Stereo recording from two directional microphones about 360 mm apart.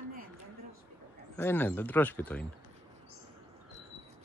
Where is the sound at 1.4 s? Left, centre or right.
Centre.